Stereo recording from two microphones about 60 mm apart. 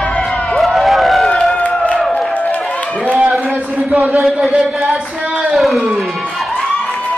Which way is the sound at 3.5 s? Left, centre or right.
Right.